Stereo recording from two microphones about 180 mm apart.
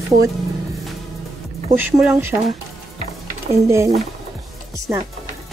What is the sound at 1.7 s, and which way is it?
Speech, 10° right (ahead or behind).